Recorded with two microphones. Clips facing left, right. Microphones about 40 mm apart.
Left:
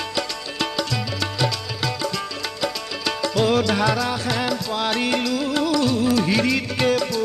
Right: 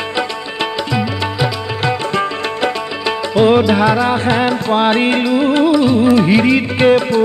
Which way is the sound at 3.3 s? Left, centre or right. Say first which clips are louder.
Right 9 dB; right.